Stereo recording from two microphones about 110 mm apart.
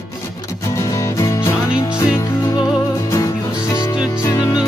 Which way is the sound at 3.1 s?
30° left (ahead or behind).